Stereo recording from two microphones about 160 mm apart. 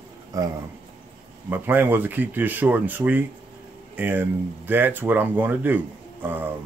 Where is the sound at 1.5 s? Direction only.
10° right (ahead or behind).